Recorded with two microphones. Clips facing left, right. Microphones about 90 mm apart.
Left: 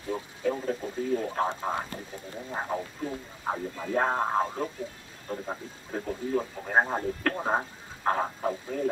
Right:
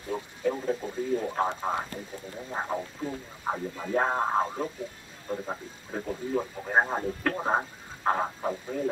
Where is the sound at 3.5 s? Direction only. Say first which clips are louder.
Right 1 dB; 5° right (ahead or behind).